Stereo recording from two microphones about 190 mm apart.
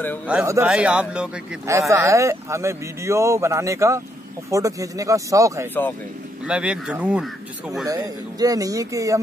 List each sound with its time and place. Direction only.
0.3 s speech: 10° right (ahead or behind)
1.7 s speech: 15° right (ahead or behind)
6.4 s speech: 5° right (ahead or behind)
7.8 s speech: 20° right (ahead or behind)